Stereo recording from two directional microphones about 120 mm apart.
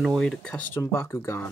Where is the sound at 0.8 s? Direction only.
20° left (ahead or behind).